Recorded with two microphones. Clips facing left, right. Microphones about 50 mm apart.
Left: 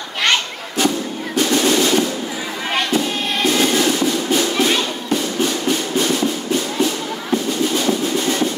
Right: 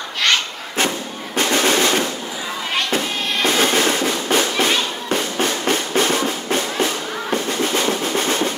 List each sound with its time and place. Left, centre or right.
0.7 s music: right
7.6 s drum roll: right